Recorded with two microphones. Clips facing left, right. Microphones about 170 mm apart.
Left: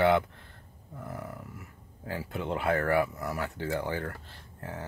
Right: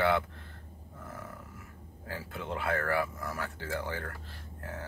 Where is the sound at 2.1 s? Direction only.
20° left (ahead or behind).